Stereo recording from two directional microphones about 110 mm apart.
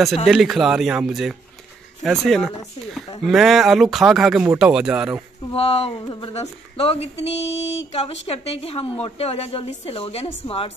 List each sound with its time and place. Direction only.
0.3 s speech: 5° right (ahead or behind)
5.5 s speech: 60° left (ahead or behind)
6.8 s speech: 65° left (ahead or behind)